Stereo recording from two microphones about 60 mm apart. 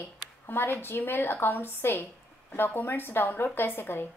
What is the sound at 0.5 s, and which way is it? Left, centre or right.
A woman's voice, left.